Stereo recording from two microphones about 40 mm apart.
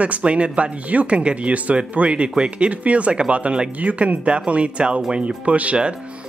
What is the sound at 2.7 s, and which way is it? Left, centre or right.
Speech, right.